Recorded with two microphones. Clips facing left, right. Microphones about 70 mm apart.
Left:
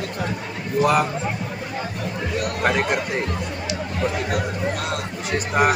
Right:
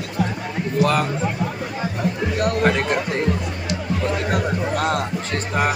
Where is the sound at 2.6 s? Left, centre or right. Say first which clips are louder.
Even; centre.